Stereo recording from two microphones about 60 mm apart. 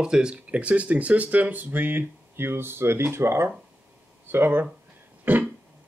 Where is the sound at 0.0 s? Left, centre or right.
Centre.